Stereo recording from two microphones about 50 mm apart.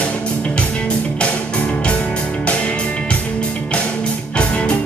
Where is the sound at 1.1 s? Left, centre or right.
Left.